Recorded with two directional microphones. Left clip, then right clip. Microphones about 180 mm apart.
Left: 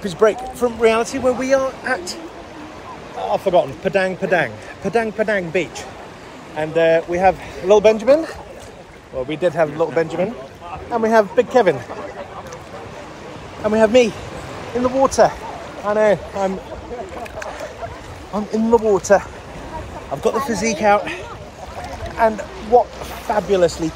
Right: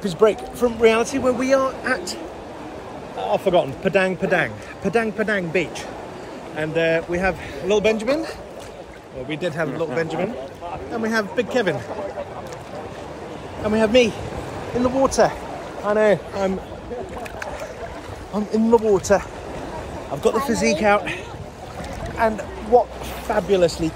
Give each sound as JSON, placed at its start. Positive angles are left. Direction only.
{"t": 0.0, "sound": "a man's voice", "side_deg": 0}
{"t": 3.3, "sound": "a man's voice", "side_deg": -5}
{"t": 9.3, "sound": "speech", "side_deg": 20}
{"t": 13.7, "sound": "a man's voice", "side_deg": 0}
{"t": 18.3, "sound": "a man's voice", "side_deg": -5}
{"t": 20.9, "sound": "speech", "side_deg": -10}
{"t": 22.1, "sound": "speech", "side_deg": -5}